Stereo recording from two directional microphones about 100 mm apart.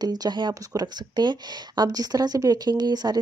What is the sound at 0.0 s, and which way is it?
Speech, 40° right (ahead or behind).